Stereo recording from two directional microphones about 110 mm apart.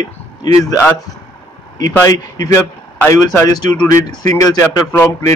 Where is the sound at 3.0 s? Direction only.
20° left (ahead or behind).